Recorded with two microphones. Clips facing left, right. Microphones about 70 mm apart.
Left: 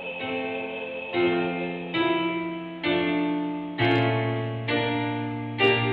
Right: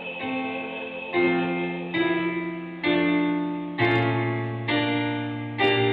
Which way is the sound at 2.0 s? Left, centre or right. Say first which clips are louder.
Even; right.